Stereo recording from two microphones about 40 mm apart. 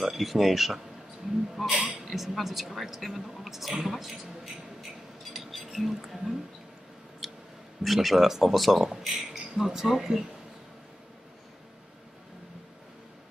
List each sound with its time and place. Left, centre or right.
0.0 s speech: centre
1.7 s speech: centre
2.0 s speech: centre
5.3 s cutlery: centre
7.2 s a sound: centre
7.8 s speech: centre